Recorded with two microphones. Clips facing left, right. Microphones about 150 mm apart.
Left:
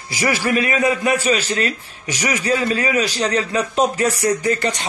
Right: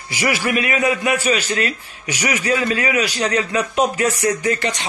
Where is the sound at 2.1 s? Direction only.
10° right (ahead or behind).